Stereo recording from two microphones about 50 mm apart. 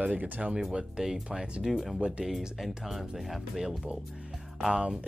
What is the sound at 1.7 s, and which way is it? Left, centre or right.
Speech, centre.